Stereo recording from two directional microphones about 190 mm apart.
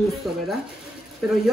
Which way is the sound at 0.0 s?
Centre (ahead or behind).